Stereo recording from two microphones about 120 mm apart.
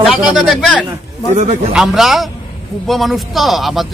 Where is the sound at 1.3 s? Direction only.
80° right.